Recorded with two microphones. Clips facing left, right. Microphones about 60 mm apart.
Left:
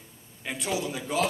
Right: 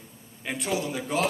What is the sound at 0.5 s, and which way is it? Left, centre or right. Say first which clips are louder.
Speech: right 2 dB; right.